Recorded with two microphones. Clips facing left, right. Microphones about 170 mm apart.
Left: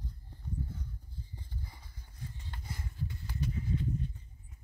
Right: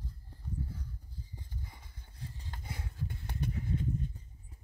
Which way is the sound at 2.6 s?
60° right (ahead or behind).